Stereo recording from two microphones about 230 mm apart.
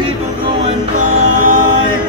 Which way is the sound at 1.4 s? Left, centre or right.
Right.